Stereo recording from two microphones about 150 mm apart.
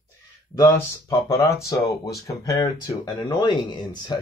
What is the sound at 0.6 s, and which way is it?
Speech, 15° left (ahead or behind).